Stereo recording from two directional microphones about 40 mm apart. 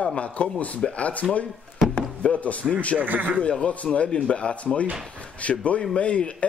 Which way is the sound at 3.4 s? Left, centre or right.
Left.